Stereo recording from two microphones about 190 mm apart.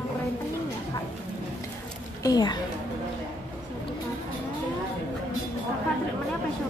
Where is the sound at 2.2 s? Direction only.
20° left (ahead or behind).